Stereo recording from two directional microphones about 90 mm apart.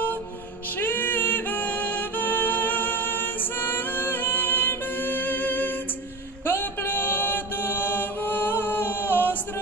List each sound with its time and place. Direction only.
0.7 s music: 20° left (ahead or behind)
6.4 s chant: 25° left (ahead or behind)